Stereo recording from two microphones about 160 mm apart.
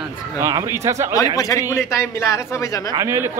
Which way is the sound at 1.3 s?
20° left (ahead or behind).